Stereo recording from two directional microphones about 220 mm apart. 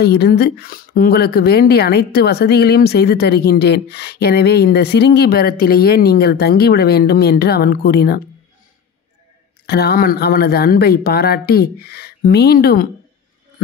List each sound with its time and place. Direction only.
0.0 s speech: 45° left (ahead or behind)
9.7 s speech: 45° left (ahead or behind)